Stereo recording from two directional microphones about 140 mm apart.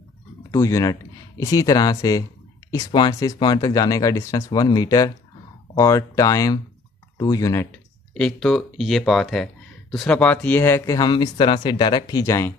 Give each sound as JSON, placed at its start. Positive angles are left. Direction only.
{"t": 0.5, "sound": "speech", "side_deg": 25}
{"t": 7.7, "sound": "speech", "side_deg": 10}
{"t": 11.0, "sound": "speech", "side_deg": 30}
{"t": 12.2, "sound": "speech", "side_deg": 20}